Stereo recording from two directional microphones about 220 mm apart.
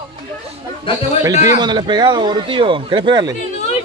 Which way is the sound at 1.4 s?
20° right (ahead or behind).